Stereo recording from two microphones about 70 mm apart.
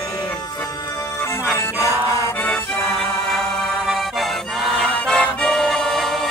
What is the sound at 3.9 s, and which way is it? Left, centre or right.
Music, centre.